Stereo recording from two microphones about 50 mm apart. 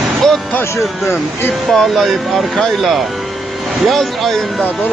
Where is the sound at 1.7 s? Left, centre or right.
Centre.